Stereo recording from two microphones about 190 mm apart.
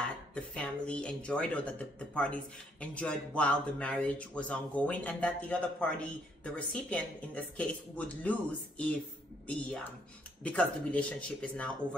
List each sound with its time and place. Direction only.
0.3 s speech: 5° left (ahead or behind)